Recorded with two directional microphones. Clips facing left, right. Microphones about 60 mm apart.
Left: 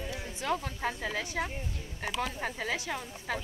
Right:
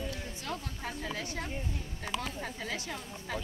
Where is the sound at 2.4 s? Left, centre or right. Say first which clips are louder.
Left 4 dB; left.